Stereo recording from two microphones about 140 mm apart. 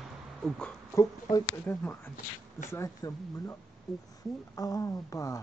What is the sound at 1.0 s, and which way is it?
Speech, 25° left (ahead or behind).